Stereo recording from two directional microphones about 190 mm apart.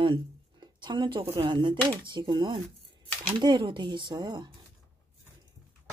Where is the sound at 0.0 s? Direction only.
25° right (ahead or behind).